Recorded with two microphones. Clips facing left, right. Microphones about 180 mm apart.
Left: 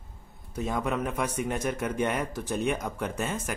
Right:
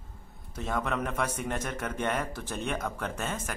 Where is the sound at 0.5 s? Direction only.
10° left (ahead or behind).